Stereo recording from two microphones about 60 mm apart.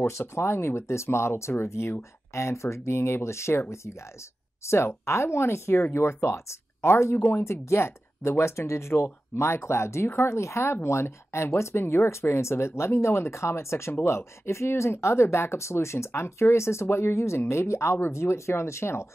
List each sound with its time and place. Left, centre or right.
0.0 s speech: left
4.6 s speech: left